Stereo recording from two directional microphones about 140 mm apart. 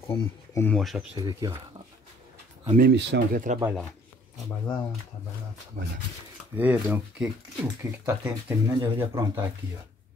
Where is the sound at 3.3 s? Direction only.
70° right (ahead or behind).